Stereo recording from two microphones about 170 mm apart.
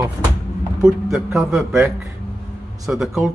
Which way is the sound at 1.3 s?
15° right (ahead or behind).